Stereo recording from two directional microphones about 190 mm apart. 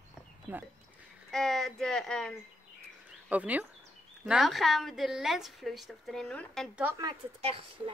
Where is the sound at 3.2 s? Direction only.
10° right (ahead or behind).